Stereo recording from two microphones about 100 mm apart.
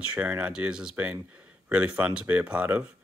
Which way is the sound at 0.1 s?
15° right (ahead or behind).